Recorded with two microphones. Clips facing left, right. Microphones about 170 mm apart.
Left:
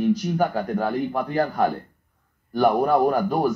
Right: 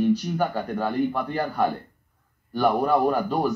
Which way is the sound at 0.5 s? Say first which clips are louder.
Left 1 dB; 15° left (ahead or behind).